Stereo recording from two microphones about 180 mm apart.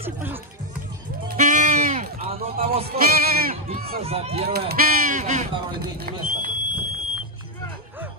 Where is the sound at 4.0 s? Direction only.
35° right (ahead or behind).